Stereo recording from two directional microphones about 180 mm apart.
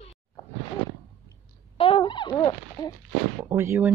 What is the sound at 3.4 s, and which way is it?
Speech, 10° right (ahead or behind).